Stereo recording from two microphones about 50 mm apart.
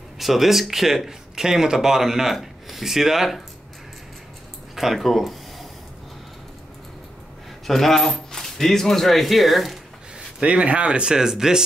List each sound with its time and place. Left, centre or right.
0.2 s speech: centre
4.7 s a sound: centre
7.6 s speech: centre
10.4 s speech: right